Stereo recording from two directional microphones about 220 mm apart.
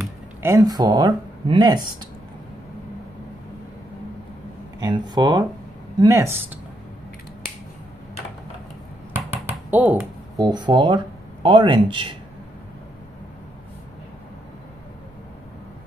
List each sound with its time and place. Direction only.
0.0 s speech: 10° right (ahead or behind)
4.7 s a man's voice: 20° right (ahead or behind)
9.5 s a sound: 10° right (ahead or behind)
10.4 s a man's voice: 20° right (ahead or behind)